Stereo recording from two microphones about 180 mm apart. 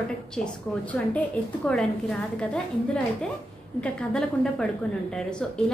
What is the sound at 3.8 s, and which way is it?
A woman's voice, 5° left (ahead or behind).